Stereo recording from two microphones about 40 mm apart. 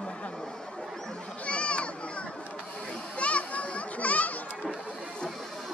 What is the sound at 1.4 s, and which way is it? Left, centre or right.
Children playing, left.